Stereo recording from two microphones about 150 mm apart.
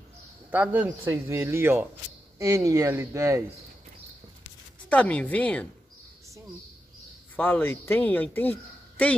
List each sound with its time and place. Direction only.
0.5 s speech: 10° right (ahead or behind)
4.8 s speech: 10° left (ahead or behind)
7.3 s speech: 10° left (ahead or behind)